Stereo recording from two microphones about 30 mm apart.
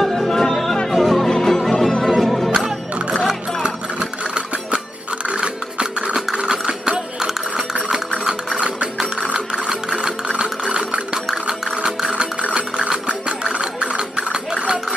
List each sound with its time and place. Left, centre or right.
0.1 s music: centre
2.5 s music: right
5.3 s music: right
6.3 s a sound: right
6.9 s music: right
8.5 s mechanisms: right
9.7 s sewing machine: right
10.4 s ratchet: right
11.4 s music: right
13.5 s a sound: right